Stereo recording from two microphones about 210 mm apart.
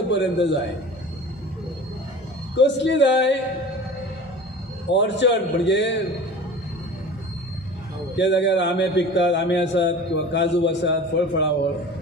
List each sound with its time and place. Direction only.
0.1 s a man's voice: 55° left (ahead or behind)
2.5 s a man's voice: 55° left (ahead or behind)
4.9 s a man's voice: 55° left (ahead or behind)
8.2 s a man's voice: 55° left (ahead or behind)